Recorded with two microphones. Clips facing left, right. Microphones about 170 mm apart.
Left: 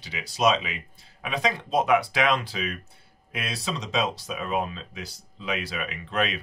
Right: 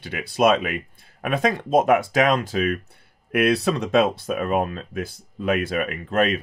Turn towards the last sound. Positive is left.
turn(degrees=-45)  # may be behind; listen again after turning